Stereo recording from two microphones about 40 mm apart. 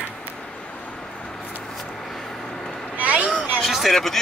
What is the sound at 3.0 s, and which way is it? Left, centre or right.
Vehicle, right.